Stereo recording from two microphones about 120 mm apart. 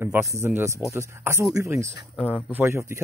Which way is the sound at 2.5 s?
20° right (ahead or behind).